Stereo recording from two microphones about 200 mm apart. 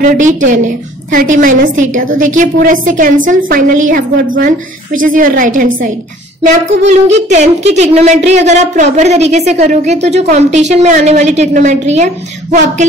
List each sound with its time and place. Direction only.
0.0 s a woman's voice: 40° right (ahead or behind)
6.9 s a woman's voice: 35° right (ahead or behind)